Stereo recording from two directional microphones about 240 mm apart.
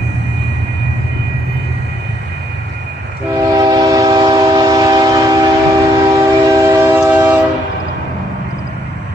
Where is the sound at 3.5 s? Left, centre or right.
Centre.